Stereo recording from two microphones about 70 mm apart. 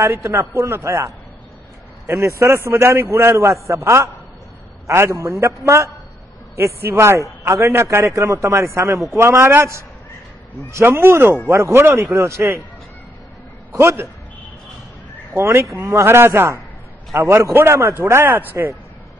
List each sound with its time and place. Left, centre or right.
0.0 s a man's voice: right
13.7 s a man's voice: right
15.3 s a man's voice: right